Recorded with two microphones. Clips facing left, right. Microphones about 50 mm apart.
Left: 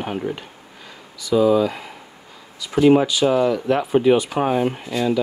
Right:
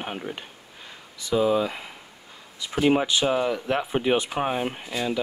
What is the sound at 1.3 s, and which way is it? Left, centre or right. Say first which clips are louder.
Speech: left 6 dB; right.